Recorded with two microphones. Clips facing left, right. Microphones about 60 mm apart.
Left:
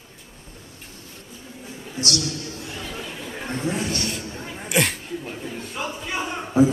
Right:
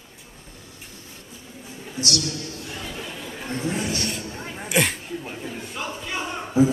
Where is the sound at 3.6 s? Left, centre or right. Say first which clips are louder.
Even; centre.